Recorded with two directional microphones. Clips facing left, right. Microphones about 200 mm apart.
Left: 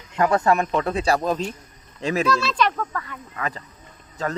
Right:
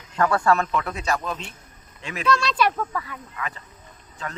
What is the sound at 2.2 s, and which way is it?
Speech, 5° left (ahead or behind).